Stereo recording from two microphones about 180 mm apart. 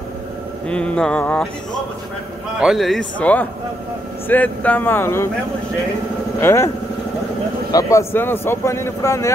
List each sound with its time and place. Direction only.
0.7 s speech: 5° left (ahead or behind)
2.6 s speech: centre (ahead or behind)
6.4 s speech: 15° left (ahead or behind)
7.7 s speech: 15° left (ahead or behind)